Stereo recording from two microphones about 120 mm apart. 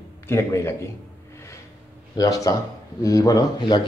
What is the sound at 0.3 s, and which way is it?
Speech, 20° left (ahead or behind).